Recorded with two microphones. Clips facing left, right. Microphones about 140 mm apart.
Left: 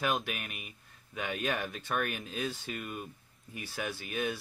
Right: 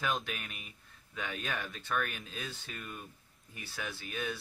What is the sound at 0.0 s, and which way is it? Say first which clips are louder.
Speech: left 3 dB; 10° left (ahead or behind).